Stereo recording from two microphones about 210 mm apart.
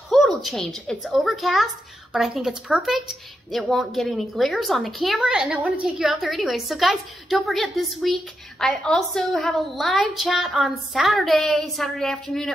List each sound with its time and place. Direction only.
0.1 s a woman's voice: centre (ahead or behind)